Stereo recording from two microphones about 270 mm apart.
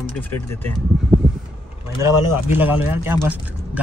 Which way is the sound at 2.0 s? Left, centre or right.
Centre.